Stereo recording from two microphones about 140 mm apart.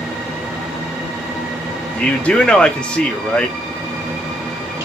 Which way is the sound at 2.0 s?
10° left (ahead or behind).